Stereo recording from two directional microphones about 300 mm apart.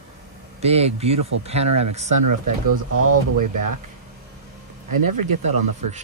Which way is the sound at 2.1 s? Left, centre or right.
Right.